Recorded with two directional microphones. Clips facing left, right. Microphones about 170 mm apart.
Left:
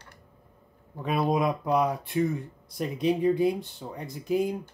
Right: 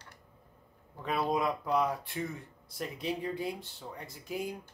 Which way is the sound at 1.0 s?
15° left (ahead or behind).